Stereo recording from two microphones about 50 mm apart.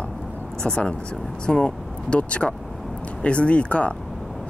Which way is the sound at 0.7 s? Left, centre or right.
Centre.